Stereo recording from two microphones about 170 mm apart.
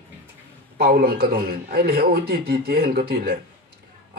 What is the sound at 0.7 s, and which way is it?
A man's voice, 65° right (ahead or behind).